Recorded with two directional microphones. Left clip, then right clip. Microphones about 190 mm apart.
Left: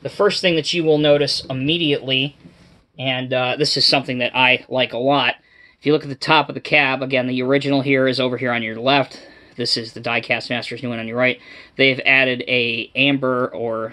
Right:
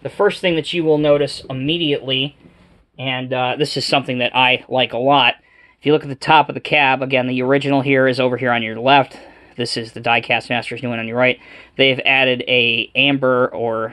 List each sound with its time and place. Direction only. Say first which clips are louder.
0.0 s speech: even; 20° right (ahead or behind)
13.2 s speech: right 5 dB; 30° right (ahead or behind)
13.5 s speech: right 3 dB; 20° right (ahead or behind)